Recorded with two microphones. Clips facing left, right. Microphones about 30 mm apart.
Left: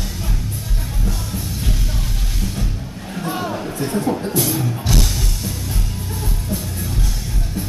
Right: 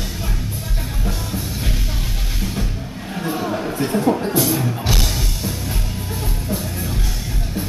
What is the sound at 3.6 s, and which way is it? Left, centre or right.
Speech, centre.